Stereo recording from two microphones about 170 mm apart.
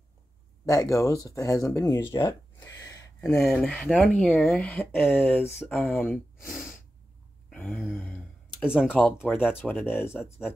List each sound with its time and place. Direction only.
0.7 s speech: 20° left (ahead or behind)
2.9 s a sound: 20° left (ahead or behind)
3.3 s speech: 5° left (ahead or behind)
6.4 s sneeze: centre (ahead or behind)
7.7 s a sound: 10° left (ahead or behind)
8.6 s speech: 5° right (ahead or behind)
9.4 s speech: 10° left (ahead or behind)